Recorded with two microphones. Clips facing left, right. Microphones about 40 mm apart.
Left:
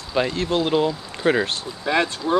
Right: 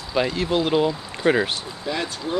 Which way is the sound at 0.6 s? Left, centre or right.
Centre.